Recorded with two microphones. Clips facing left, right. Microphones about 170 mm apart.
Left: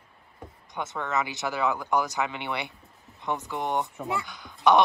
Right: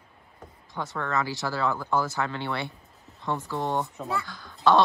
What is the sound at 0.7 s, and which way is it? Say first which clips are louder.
Speech: even; 20° left (ahead or behind).